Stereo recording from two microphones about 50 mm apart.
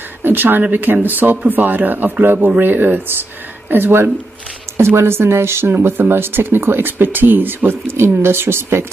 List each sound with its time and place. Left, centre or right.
0.2 s speech: right